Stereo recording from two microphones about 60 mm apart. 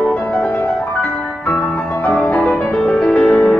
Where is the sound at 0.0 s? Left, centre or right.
Centre.